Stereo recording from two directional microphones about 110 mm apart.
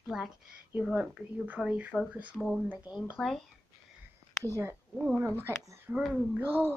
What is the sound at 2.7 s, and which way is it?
Speech, 15° right (ahead or behind).